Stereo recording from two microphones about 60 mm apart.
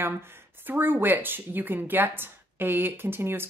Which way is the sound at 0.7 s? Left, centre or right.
Right.